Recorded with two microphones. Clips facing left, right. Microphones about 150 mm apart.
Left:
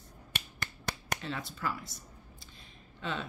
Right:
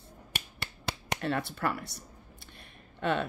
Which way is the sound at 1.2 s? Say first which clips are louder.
Right 8 dB; 65° right (ahead or behind).